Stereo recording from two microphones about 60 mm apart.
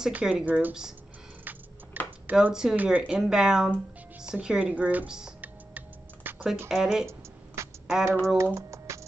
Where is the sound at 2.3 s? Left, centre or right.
Centre.